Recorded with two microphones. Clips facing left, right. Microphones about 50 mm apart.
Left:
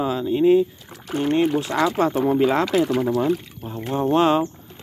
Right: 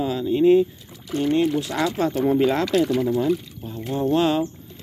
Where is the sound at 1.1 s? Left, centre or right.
Left.